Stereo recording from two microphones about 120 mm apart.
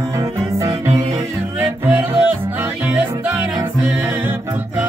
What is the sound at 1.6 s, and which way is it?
Music, 10° right (ahead or behind).